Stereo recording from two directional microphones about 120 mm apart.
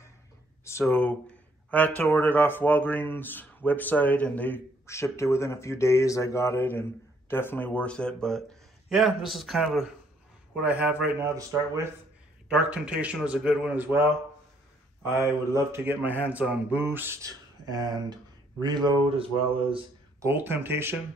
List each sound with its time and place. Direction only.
0.7 s speech: 20° left (ahead or behind)
4.8 s speech: 25° left (ahead or behind); by 9.8 s centre (ahead or behind)
10.6 s mantra: 10° right (ahead or behind)
12.4 s mantra: 10° right (ahead or behind)
15.2 s mantra: 20° right (ahead or behind)
17.6 s speech: 35° right (ahead or behind)
20.2 s mantra: 20° right (ahead or behind)